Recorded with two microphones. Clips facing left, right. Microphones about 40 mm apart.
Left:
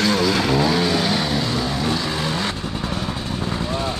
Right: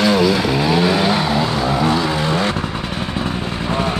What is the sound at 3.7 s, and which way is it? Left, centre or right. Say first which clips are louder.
Vehicle: right 9 dB; right.